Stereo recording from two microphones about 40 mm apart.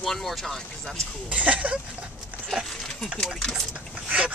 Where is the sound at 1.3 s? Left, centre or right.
Right.